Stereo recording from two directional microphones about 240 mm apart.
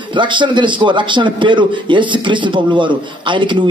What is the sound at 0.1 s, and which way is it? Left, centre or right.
A man's voice, centre.